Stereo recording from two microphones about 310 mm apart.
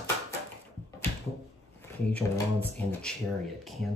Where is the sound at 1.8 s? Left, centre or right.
Centre.